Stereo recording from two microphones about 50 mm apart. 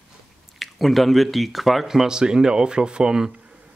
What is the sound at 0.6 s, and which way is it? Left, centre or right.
Speech, centre.